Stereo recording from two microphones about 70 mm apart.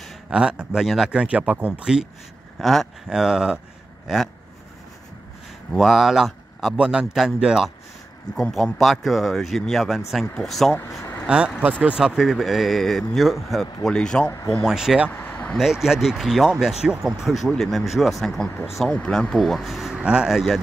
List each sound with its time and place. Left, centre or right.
0.3 s speech: centre
2.6 s speech: centre
3.1 s speech: centre
5.7 s speech: centre
8.4 s speech: centre
10.7 s vehicle: left
11.2 s speech: centre
14.2 s speech: left
14.6 s speech: centre
15.0 s a sound: left
15.5 s speech: centre
20.0 s speech: centre
20.2 s speech: centre